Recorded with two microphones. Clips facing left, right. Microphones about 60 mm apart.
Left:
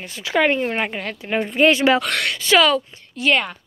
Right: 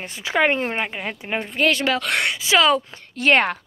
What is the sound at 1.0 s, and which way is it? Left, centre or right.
Speech, centre.